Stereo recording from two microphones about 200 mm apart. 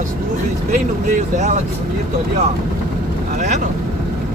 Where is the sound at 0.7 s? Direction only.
35° right (ahead or behind).